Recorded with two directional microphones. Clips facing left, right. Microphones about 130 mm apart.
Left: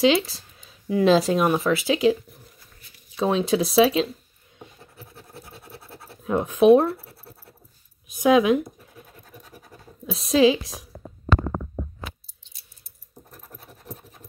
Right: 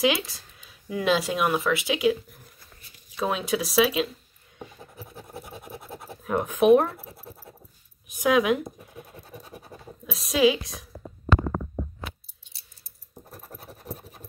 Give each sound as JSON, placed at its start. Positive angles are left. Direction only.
{"t": 0.0, "sound": "speech", "side_deg": 25}
{"t": 3.2, "sound": "speech", "side_deg": 30}
{"t": 4.9, "sound": "scratch", "side_deg": -15}
{"t": 6.2, "sound": "speech", "side_deg": 20}
{"t": 7.1, "sound": "scratch", "side_deg": -15}
{"t": 8.2, "sound": "speech", "side_deg": 20}
{"t": 8.9, "sound": "scratch", "side_deg": -20}
{"t": 10.0, "sound": "speech", "side_deg": 30}
{"t": 12.4, "sound": "a sound", "side_deg": -10}